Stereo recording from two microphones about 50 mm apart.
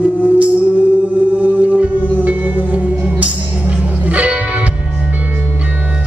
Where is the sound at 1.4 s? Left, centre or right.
Right.